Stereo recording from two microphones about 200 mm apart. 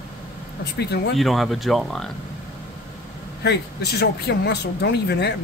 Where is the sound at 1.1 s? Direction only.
Centre (ahead or behind).